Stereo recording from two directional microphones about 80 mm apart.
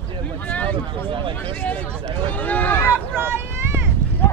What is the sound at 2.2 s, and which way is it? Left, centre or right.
Run, left.